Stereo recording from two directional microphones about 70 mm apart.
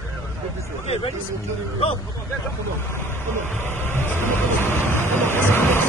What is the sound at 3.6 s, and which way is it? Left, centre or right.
Speech, left.